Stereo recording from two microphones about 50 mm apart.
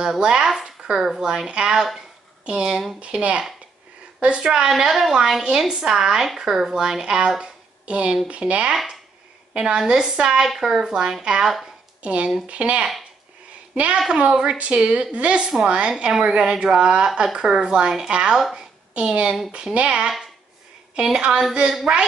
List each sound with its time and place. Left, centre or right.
0.2 s a woman's voice: centre
0.5 s a woman's voice: centre; by 4.5 s right
4.5 s a woman's voice: centre
10.4 s a woman's voice: centre; by 12.8 s right
13.9 s a woman's voice: centre
18.9 s a woman's voice: centre